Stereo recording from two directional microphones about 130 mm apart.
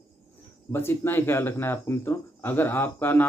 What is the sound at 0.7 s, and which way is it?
Speech, 20° left (ahead or behind).